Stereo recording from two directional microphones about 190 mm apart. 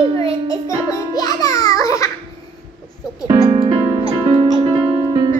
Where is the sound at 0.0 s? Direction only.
25° right (ahead or behind).